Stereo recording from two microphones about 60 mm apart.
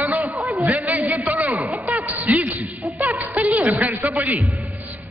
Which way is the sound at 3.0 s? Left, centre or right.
Right.